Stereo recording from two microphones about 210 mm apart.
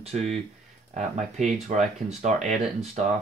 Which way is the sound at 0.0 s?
30° right (ahead or behind).